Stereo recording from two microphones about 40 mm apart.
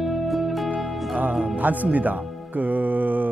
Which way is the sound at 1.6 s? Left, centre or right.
Right.